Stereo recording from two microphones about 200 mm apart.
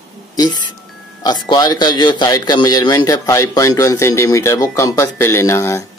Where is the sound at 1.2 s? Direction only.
20° left (ahead or behind).